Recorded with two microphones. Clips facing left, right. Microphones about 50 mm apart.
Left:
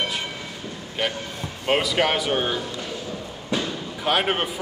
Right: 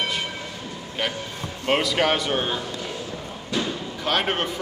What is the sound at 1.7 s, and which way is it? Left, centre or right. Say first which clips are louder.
Speech: even; centre.